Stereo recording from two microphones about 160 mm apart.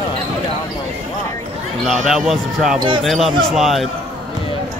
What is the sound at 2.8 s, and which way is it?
Speech, 30° right (ahead or behind).